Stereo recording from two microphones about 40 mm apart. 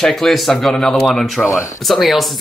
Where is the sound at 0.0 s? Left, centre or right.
Centre.